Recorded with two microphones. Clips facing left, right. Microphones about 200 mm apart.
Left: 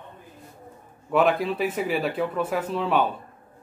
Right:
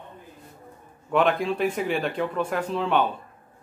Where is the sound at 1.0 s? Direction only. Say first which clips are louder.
Left 1 dB; 5° left (ahead or behind).